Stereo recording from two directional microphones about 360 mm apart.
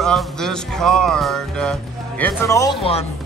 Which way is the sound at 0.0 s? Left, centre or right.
Centre.